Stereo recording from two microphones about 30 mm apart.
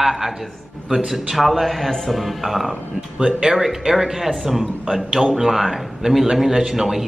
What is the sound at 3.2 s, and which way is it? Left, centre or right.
Speech, right.